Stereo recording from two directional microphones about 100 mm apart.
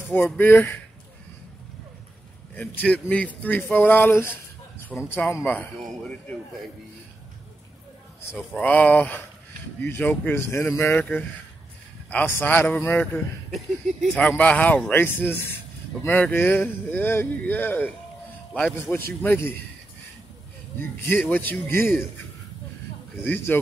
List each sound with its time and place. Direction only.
0.1 s a man's voice: 20° left (ahead or behind)
2.5 s a man's voice: 15° left (ahead or behind)
4.9 s a man's voice: centre (ahead or behind)
5.4 s a man's voice: 10° left (ahead or behind)
8.4 s a man's voice: 15° left (ahead or behind)
13.0 s a man's voice: 5° left (ahead or behind); by 19.4 s 20° left (ahead or behind)
21.1 s speech: 20° left (ahead or behind)
23.2 s speech: 20° left (ahead or behind)